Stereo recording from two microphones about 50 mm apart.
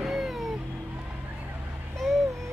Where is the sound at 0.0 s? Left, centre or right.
Centre.